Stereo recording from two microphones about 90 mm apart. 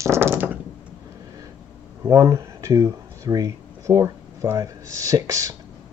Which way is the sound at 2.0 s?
35° right (ahead or behind).